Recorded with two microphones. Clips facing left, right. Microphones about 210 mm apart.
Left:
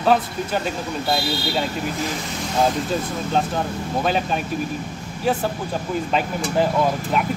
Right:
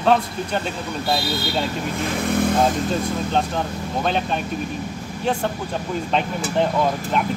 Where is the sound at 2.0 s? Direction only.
55° right (ahead or behind).